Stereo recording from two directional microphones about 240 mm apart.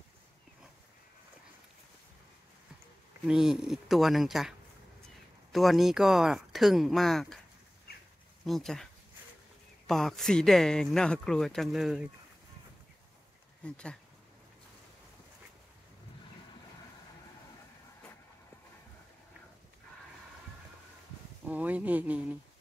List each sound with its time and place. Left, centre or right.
3.3 s speech: centre
8.5 s speech: centre
9.8 s speech: centre
13.7 s speech: centre
21.5 s speech: centre